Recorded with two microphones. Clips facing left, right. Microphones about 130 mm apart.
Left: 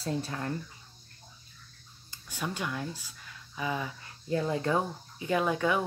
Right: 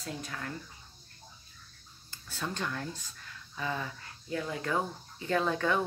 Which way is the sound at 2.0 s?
15° left (ahead or behind).